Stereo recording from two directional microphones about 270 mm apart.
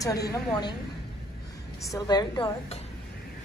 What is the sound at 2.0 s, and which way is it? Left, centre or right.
Speech, centre.